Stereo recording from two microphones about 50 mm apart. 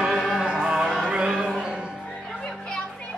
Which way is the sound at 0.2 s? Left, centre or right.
Centre.